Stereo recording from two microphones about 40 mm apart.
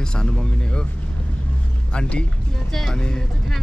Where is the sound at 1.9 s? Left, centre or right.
Left.